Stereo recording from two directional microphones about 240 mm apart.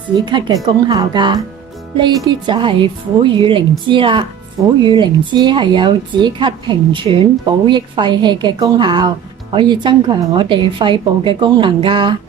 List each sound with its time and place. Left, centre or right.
0.2 s speech: centre